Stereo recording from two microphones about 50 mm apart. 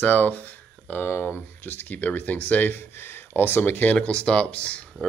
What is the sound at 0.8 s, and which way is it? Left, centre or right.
Speech, left.